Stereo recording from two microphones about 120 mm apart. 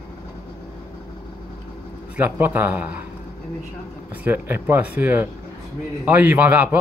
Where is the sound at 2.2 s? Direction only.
15° right (ahead or behind).